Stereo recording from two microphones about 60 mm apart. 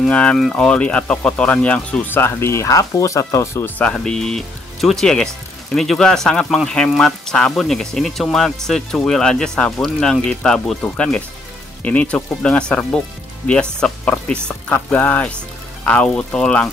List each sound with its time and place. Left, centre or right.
0.1 s speech: centre
2.0 s speech: left
3.9 s speech: centre
10.8 s speech: centre
14.7 s speech: left